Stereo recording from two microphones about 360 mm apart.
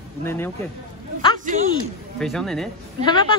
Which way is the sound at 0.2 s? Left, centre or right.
Centre.